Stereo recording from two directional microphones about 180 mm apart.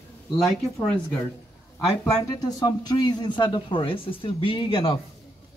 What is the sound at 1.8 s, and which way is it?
A man's voice, 20° left (ahead or behind).